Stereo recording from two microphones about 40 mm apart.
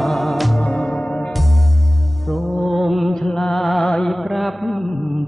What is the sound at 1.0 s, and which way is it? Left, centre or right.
Music, centre.